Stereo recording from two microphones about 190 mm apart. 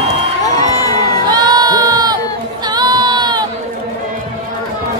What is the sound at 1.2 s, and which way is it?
Crowd, 20° right (ahead or behind).